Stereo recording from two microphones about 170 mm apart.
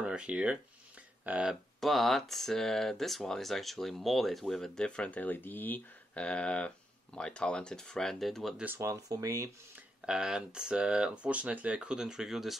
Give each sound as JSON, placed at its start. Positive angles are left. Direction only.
{"t": 0.0, "sound": "speech", "side_deg": -5}
{"t": 8.6, "sound": "speech", "side_deg": -15}
{"t": 10.0, "sound": "speech", "side_deg": -5}